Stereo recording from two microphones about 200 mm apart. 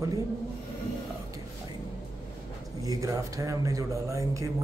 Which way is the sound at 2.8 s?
15° right (ahead or behind).